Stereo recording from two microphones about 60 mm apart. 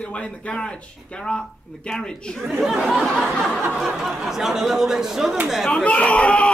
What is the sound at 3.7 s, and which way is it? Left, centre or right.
Speech, centre.